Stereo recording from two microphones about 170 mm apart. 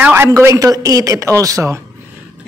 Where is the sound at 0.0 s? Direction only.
15° right (ahead or behind).